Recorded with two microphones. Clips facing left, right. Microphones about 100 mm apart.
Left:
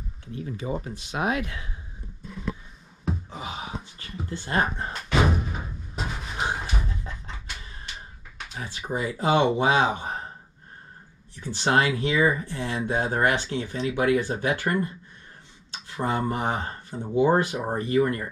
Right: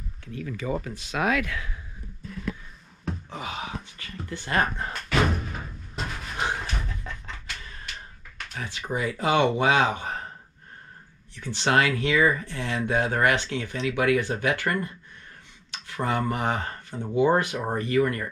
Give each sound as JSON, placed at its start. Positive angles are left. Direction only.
{"t": 0.2, "sound": "speech", "side_deg": 30}
{"t": 3.3, "sound": "gasp", "side_deg": 20}
{"t": 4.3, "sound": "speech", "side_deg": 20}
{"t": 4.9, "sound": "music", "side_deg": 5}
{"t": 6.9, "sound": "a sound", "side_deg": 20}
{"t": 7.3, "sound": "music", "side_deg": 10}
{"t": 7.9, "sound": "a sound", "side_deg": 5}
{"t": 8.5, "sound": "speech", "side_deg": 20}
{"t": 11.3, "sound": "speech", "side_deg": 15}
{"t": 15.9, "sound": "speech", "side_deg": 20}